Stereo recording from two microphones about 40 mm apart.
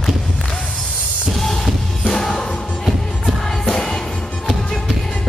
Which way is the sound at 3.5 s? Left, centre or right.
Centre.